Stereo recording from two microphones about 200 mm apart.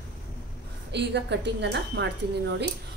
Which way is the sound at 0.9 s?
60° right (ahead or behind).